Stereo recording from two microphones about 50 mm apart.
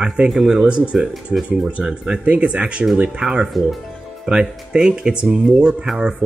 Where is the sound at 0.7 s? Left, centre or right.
Right.